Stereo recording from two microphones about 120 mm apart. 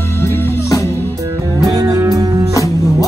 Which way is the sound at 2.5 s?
30° left (ahead or behind).